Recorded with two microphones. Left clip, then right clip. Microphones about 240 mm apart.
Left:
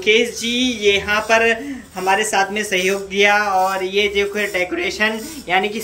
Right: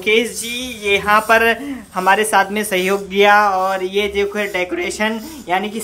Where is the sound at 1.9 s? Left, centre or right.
Centre.